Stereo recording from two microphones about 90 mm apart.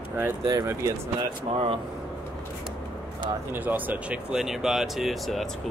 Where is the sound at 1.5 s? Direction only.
75° right (ahead or behind).